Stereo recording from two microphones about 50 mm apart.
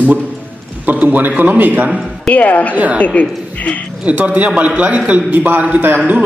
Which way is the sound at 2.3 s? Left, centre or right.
Left.